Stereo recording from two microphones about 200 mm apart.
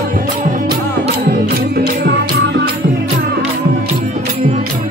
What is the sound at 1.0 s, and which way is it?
Music, 45° right (ahead or behind).